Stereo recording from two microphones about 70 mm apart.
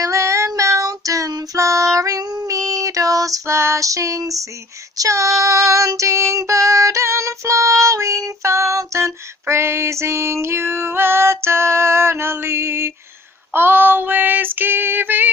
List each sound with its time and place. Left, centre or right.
0.0 s female singing: right
0.6 s child singing: right
13.5 s female singing: right